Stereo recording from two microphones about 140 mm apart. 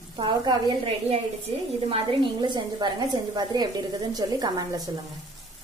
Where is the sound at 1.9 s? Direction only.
35° right (ahead or behind).